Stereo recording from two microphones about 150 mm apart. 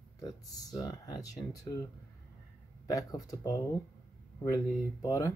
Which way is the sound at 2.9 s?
25° left (ahead or behind).